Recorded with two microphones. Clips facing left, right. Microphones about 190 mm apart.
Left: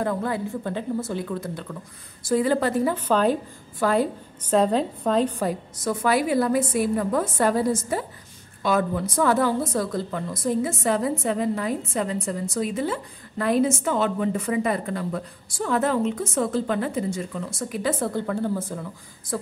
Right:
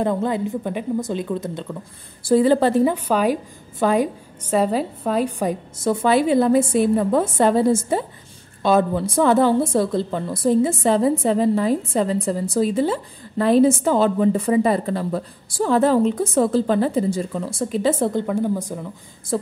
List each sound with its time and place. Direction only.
0.0 s a woman's voice: 20° right (ahead or behind)
2.9 s a woman's voice: 10° right (ahead or behind)
5.8 s a woman's voice: 25° right (ahead or behind)
19.3 s speech: 25° right (ahead or behind)